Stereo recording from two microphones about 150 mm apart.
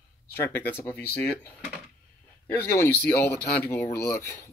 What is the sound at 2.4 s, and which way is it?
Speech, 15° left (ahead or behind).